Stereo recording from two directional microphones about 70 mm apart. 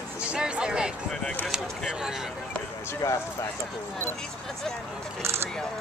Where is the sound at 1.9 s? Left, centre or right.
Centre.